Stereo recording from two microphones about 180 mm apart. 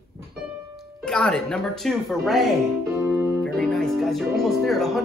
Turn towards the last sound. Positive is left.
turn(degrees=0)  # may be behind; listen again after turning